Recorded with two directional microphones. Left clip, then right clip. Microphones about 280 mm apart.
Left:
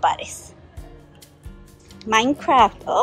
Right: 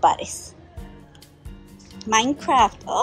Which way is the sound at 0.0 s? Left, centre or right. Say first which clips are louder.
Right 2 dB; centre.